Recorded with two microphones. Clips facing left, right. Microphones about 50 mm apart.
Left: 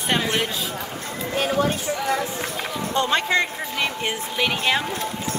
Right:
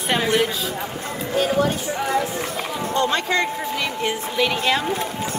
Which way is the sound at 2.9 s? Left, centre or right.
Left.